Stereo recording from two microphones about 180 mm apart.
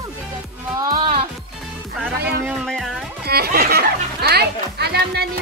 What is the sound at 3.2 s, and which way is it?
Speech, 60° right (ahead or behind).